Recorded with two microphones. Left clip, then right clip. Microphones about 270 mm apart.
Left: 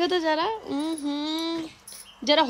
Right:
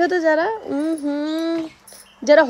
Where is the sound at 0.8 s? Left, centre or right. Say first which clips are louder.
Right 9 dB; centre.